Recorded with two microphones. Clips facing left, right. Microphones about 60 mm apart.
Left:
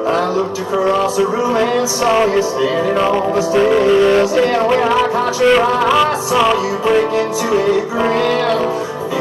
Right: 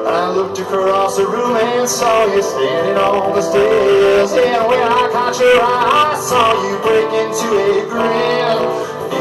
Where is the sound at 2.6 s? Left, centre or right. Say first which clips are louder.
Right 1 dB; right.